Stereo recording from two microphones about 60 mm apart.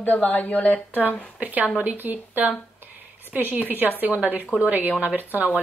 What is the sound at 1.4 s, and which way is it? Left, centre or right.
A woman's voice, right.